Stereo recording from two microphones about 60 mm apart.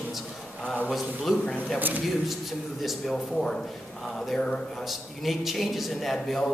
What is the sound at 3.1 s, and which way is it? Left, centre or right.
Speech, centre.